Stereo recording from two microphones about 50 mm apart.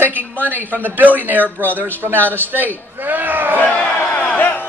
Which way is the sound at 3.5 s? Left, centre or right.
Left.